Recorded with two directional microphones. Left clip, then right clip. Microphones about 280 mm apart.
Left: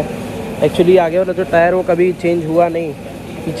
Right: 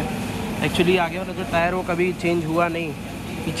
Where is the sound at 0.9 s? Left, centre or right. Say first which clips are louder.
Left 10 dB; centre.